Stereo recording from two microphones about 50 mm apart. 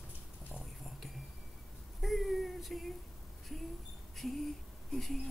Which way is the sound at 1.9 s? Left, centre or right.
Centre.